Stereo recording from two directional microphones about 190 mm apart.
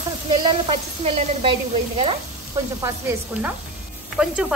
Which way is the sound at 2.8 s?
5° right (ahead or behind).